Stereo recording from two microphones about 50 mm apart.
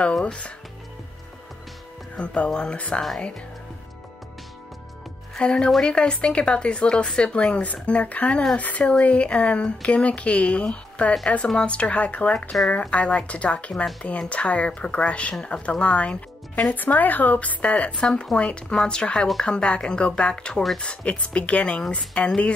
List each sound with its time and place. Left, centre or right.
0.2 s speech: left
2.1 s speech: left
5.4 s speech: centre
16.7 s speech: left
17.9 s speech: centre